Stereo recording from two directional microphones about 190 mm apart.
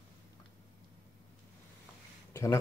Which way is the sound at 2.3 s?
15° left (ahead or behind).